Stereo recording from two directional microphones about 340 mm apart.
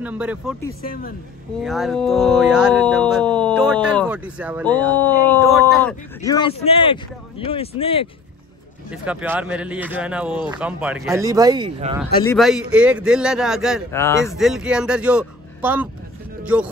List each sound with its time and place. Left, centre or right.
0.0 s speech: centre
0.8 s speech: left
1.6 s speech: centre
6.2 s speech: centre
8.9 s speech: centre
12.3 s speech: centre